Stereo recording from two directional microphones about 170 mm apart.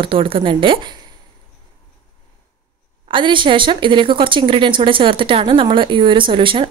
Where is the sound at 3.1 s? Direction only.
30° right (ahead or behind).